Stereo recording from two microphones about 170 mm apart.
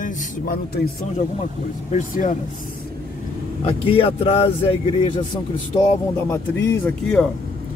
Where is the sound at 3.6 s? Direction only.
30° left (ahead or behind).